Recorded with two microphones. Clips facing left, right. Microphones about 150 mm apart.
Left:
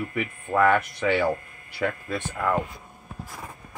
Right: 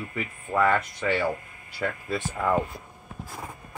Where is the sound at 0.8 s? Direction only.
65° left (ahead or behind).